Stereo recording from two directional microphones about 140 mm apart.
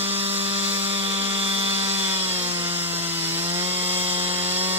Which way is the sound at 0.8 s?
45° right (ahead or behind).